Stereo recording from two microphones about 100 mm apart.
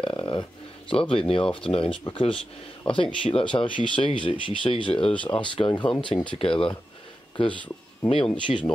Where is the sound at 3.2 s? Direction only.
55° left (ahead or behind).